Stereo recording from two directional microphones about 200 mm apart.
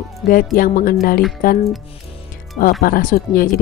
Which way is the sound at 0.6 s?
45° left (ahead or behind).